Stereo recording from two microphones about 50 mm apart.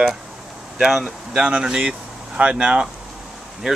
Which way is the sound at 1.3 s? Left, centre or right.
Centre.